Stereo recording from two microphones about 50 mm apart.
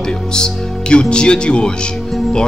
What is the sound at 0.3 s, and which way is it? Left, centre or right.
Speech, centre.